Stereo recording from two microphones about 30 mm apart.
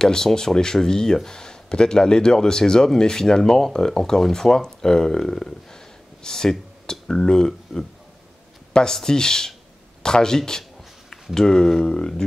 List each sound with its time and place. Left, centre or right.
0.0 s speech: left
8.9 s speech: left